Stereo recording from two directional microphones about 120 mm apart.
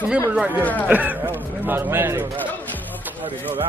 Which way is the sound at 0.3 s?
10° right (ahead or behind).